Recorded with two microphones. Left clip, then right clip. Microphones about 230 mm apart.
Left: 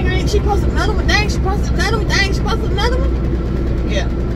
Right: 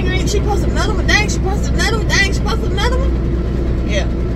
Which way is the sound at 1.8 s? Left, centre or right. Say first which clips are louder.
Right 2 dB; centre.